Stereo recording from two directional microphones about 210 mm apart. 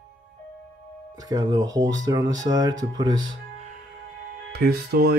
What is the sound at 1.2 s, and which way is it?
Speech, 20° right (ahead or behind).